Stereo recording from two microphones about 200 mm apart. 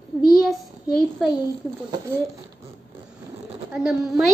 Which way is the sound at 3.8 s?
5° right (ahead or behind).